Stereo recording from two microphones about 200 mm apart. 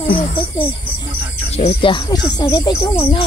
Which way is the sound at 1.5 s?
25° left (ahead or behind).